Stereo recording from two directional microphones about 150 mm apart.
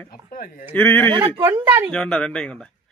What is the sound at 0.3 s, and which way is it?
Speech, 75° left (ahead or behind).